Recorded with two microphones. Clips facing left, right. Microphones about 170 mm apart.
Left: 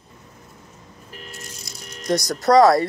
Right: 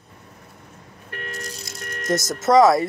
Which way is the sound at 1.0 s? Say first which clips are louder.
Right 6 dB; 65° right (ahead or behind).